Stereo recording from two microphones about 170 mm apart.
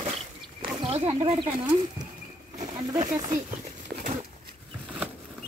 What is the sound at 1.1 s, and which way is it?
Speech, 35° right (ahead or behind).